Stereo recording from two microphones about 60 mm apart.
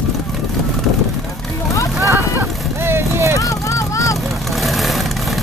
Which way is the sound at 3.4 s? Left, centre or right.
Left.